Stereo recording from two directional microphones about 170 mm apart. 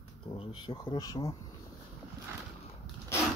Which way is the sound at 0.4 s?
30° left (ahead or behind).